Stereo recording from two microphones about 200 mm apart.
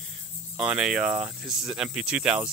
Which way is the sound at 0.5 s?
5° right (ahead or behind).